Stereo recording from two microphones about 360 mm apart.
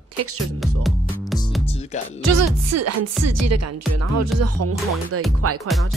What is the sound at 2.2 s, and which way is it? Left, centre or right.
Music, right.